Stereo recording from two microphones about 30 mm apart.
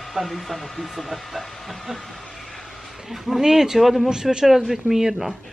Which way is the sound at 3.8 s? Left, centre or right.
Centre.